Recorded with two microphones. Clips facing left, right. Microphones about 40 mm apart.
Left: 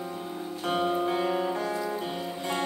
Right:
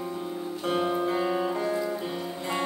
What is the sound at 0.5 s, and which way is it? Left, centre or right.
Music, centre.